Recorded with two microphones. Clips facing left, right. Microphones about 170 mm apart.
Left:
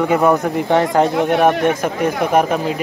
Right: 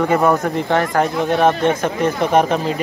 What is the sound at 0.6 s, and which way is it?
A man's voice, 20° left (ahead or behind).